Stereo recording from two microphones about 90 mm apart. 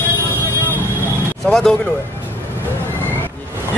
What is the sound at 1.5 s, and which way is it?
Speech, 5° left (ahead or behind).